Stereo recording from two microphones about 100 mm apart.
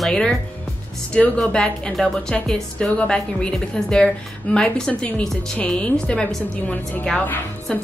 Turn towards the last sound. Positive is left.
turn(degrees=15)  # may be behind; listen again after turning